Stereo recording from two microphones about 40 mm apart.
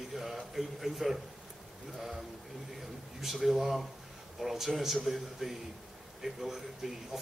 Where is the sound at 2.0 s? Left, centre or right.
Centre.